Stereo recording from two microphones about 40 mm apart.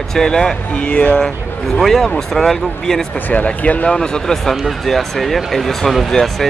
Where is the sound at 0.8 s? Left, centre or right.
Left.